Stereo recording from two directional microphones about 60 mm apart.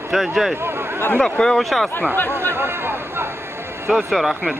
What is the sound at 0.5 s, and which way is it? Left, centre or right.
Speech, right.